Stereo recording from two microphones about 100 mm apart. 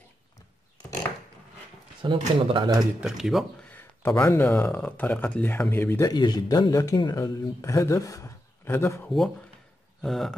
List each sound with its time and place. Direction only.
2.0 s speech: 55° right (ahead or behind)
3.0 s speech: 5° right (ahead or behind)
4.0 s speech: 30° left (ahead or behind)
4.4 s speech: 10° left (ahead or behind)
6.0 s a man's voice: 45° left (ahead or behind)
7.3 s a man's voice: 30° left (ahead or behind)
10.0 s speech: 5° left (ahead or behind)